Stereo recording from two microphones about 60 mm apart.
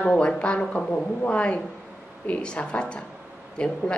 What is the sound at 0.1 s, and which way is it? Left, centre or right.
Speech, centre.